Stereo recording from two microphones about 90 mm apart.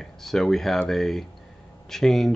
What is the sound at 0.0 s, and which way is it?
Speech, 5° left (ahead or behind).